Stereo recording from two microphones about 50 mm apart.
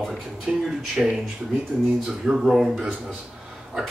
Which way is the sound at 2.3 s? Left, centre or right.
Centre.